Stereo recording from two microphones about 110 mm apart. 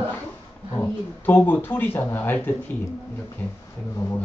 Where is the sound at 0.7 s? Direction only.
20° left (ahead or behind).